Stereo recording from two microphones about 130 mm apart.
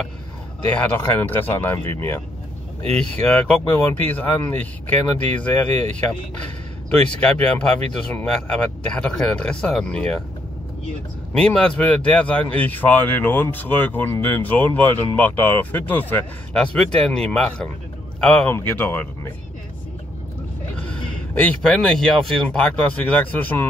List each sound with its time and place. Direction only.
0.7 s speech: 15° left (ahead or behind)
3.0 s speech: 5° left (ahead or behind)
7.2 s speech: 10° left (ahead or behind)
11.3 s speech: 10° left (ahead or behind)
20.8 s speech: 10° left (ahead or behind)